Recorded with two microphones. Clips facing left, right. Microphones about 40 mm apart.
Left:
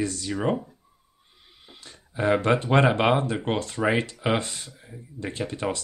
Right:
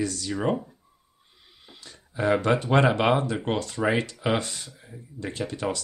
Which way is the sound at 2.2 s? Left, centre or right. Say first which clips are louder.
Left 1 dB; centre.